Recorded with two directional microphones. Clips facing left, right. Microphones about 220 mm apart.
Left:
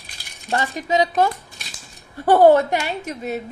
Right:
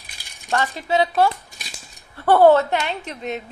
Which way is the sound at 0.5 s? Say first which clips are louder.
Even; 15° left (ahead or behind).